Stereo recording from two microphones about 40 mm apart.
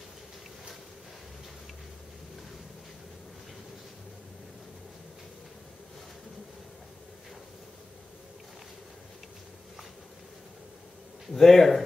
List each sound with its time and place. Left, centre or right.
11.3 s speech: centre